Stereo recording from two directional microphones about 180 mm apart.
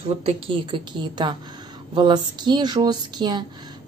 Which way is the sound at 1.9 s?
25° right (ahead or behind).